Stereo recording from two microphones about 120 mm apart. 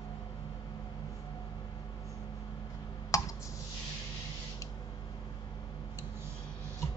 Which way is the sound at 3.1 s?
30° left (ahead or behind).